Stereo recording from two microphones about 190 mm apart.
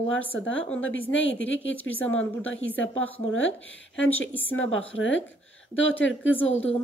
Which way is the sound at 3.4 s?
85° left.